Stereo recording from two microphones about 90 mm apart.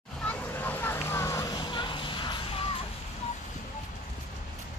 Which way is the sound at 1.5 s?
55° left (ahead or behind).